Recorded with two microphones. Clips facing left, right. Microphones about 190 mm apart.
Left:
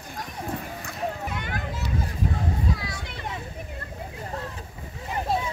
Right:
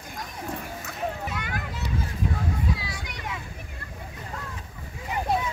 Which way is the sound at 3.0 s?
30° left (ahead or behind).